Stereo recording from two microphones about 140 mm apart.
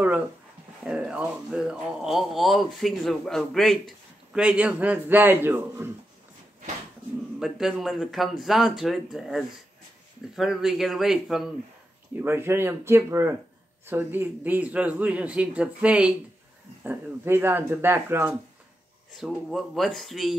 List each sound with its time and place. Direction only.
0.8 s speech: 5° right (ahead or behind)
7.3 s speech: 5° right (ahead or behind)
12.2 s speech: 15° right (ahead or behind)
19.1 s speech: centre (ahead or behind)